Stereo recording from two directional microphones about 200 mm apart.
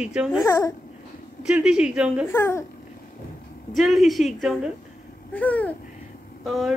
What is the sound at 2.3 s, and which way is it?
Speech, 10° left (ahead or behind).